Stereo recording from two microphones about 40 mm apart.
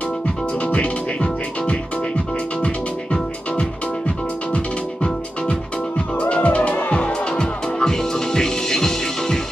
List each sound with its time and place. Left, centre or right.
0.7 s music: left
6.1 s music: left
7.9 s music: centre